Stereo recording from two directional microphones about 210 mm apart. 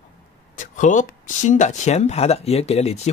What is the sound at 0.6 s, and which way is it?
Speech, 35° left (ahead or behind).